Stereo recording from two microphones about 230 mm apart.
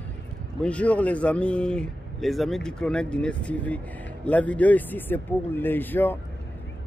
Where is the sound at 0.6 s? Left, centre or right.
Centre.